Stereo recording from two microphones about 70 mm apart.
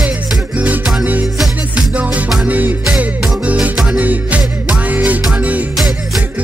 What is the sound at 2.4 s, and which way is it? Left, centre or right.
Music, right.